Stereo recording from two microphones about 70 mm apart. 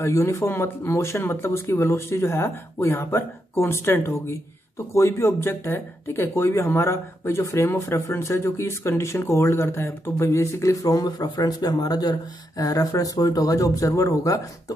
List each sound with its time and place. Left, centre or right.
0.0 s speech: left